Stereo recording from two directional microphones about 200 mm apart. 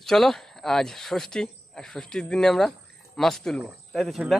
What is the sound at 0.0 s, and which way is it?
Speech, centre (ahead or behind).